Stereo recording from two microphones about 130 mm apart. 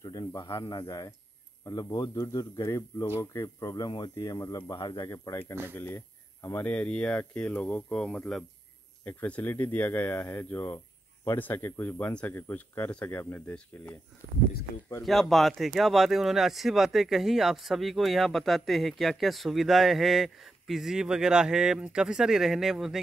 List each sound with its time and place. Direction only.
0.0 s speech: 30° left (ahead or behind); by 13.9 s 15° left (ahead or behind)
15.0 s speech: centre (ahead or behind)